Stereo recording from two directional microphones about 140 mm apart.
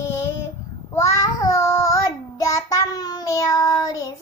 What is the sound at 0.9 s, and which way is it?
Child singing, 25° left (ahead or behind).